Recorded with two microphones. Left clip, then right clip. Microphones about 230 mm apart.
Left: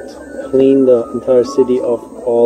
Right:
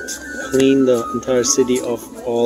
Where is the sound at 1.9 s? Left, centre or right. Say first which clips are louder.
Left 6 dB; right.